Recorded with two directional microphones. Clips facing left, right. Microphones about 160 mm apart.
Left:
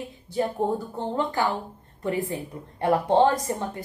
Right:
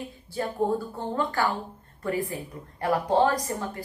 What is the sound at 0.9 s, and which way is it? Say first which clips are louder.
A woman's voice: left 2 dB; 20° left (ahead or behind).